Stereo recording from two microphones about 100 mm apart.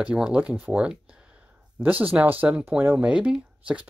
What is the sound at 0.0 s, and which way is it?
Speech, 10° right (ahead or behind).